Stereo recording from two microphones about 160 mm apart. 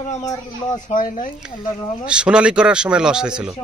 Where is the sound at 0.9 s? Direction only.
55° left (ahead or behind).